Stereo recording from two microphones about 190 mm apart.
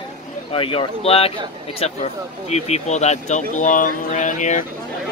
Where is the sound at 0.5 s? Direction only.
30° left (ahead or behind).